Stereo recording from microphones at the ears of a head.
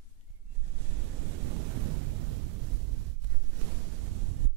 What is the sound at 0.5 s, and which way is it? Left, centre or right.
Waves, right.